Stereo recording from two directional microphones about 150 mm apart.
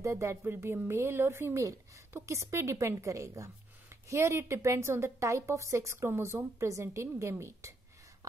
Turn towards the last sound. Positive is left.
turn(degrees=-20)  # may be behind; listen again after turning